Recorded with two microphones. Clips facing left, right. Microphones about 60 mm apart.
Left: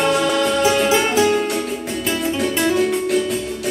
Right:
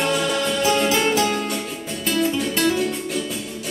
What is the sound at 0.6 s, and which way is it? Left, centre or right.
Music, left.